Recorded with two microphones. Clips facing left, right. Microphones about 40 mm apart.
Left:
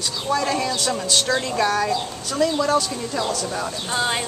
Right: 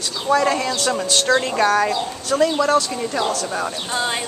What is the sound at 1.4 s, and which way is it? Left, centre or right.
A woman's voice, right.